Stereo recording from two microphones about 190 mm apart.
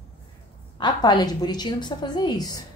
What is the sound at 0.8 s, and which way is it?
A woman's voice, 20° left (ahead or behind).